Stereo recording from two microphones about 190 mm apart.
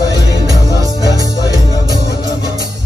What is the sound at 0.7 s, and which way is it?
Music, 20° left (ahead or behind).